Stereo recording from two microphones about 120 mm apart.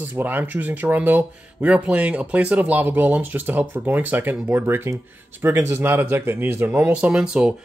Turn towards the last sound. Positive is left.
turn(degrees=-5)  # may be behind; listen again after turning